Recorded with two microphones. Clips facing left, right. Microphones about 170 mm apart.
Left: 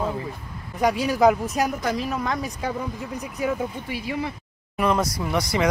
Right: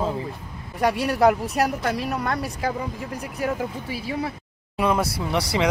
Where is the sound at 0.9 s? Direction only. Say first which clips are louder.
Even; 65° right (ahead or behind).